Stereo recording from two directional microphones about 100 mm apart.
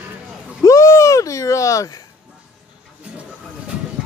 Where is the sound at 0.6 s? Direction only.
30° left (ahead or behind).